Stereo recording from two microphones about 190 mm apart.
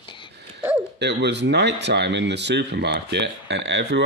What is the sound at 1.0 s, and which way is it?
Speech, 60° right (ahead or behind).